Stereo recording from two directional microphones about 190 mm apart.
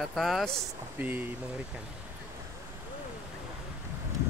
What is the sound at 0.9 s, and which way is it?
Speech, 10° right (ahead or behind).